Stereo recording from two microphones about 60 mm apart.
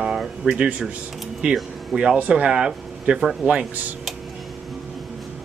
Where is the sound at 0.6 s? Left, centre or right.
Centre.